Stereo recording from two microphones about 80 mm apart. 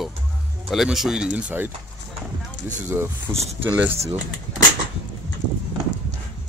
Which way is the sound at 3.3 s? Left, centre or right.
Right.